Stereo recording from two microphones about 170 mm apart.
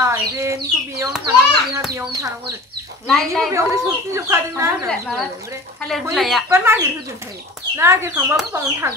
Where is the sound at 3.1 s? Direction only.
Centre (ahead or behind).